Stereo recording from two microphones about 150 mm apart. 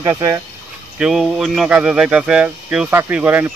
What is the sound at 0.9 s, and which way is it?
Speech, 5° right (ahead or behind).